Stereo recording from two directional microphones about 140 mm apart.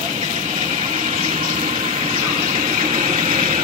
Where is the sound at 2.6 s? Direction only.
55° right (ahead or behind).